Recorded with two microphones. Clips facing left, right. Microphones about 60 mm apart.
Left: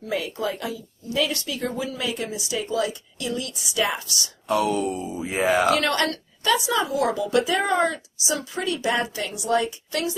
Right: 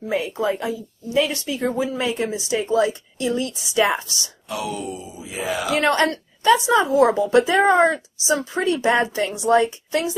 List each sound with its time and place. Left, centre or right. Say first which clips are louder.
0.0 s a woman's voice: right 4 dB; right
4.5 s speech: left 6 dB; left
5.8 s a woman's voice: right 5 dB; right